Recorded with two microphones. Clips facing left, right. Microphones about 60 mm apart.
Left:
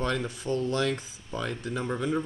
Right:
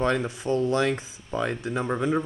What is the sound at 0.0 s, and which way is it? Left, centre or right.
Speech, right.